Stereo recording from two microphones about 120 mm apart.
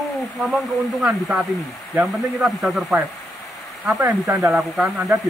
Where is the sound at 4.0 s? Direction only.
20° right (ahead or behind).